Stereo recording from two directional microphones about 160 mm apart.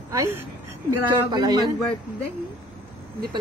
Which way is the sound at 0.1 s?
20° right (ahead or behind).